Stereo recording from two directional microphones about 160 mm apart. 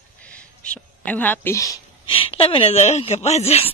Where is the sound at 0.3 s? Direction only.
10° left (ahead or behind).